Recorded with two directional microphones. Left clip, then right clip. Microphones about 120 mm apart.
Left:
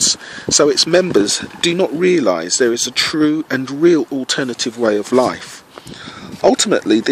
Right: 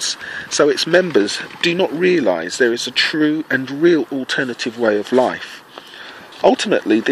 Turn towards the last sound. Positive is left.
turn(degrees=40)  # may be behind; listen again after turning